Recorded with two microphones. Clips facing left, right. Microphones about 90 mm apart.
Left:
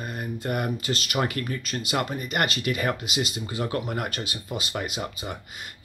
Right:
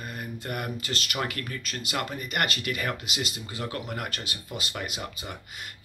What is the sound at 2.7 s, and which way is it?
Speech, 15° left (ahead or behind).